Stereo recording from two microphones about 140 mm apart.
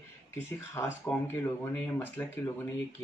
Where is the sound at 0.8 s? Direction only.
20° left (ahead or behind).